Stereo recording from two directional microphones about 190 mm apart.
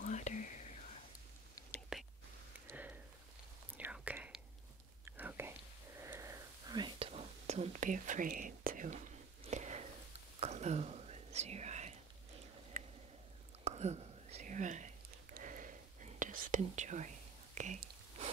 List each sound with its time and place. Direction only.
0.0 s whispering: 40° left (ahead or behind)
1.9 s whispering: centre (ahead or behind)
2.6 s sniff: 10° right (ahead or behind)
3.7 s whispering: 10° right (ahead or behind); by 12.0 s 35° right (ahead or behind)
12.7 s a sound: 45° right (ahead or behind)
13.7 s whispering: 35° right (ahead or behind)